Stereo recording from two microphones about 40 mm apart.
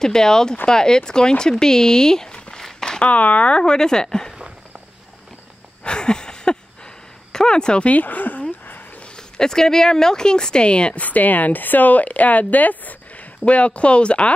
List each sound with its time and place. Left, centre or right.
0.0 s speech: centre
3.0 s speech: left
3.5 s speech: centre
5.9 s a sound: left
7.3 s speech: left
7.9 s a sound: left
9.0 s speech: centre
11.0 s speech: left